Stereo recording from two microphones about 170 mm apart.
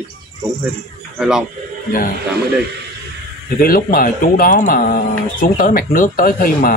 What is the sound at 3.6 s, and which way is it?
Speech, 60° left (ahead or behind).